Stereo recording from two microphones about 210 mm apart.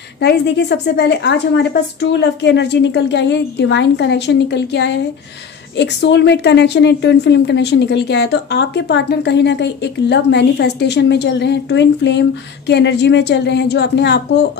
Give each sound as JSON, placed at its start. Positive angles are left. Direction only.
{"t": 0.2, "sound": "a woman's voice", "side_deg": 50}